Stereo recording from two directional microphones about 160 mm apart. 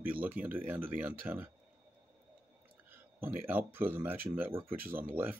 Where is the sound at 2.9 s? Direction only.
10° right (ahead or behind).